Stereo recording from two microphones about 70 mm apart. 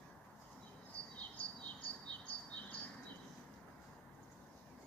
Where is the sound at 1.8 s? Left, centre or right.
Left.